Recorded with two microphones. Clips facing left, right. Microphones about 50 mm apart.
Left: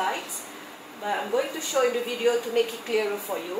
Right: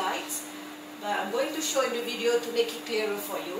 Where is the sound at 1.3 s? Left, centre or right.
Centre.